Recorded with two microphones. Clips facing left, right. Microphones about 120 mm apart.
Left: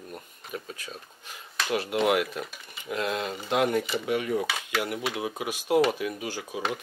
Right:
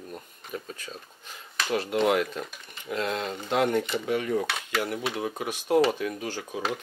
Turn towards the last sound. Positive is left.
turn(degrees=5)  # may be behind; listen again after turning